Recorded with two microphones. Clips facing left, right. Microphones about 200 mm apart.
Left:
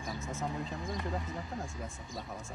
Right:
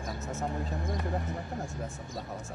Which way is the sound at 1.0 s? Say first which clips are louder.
Right 3 dB; 60° right (ahead or behind).